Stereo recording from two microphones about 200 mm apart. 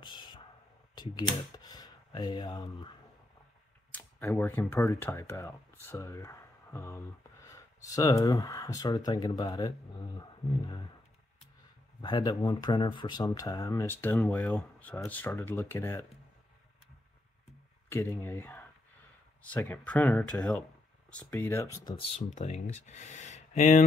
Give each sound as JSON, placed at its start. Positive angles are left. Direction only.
{"t": 0.0, "sound": "whispering", "side_deg": 20}
{"t": 0.9, "sound": "speech", "side_deg": 20}
{"t": 3.9, "sound": "speech", "side_deg": 10}
{"t": 12.0, "sound": "speech", "side_deg": 20}
{"t": 18.2, "sound": "speech", "side_deg": 10}
{"t": 21.8, "sound": "speech", "side_deg": 25}